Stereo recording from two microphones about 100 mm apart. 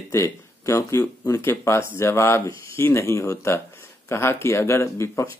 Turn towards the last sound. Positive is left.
turn(degrees=30)  # may be behind; listen again after turning